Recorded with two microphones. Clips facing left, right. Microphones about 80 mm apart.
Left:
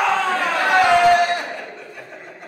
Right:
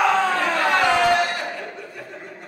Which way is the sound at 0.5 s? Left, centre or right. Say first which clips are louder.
Left 6 dB; centre.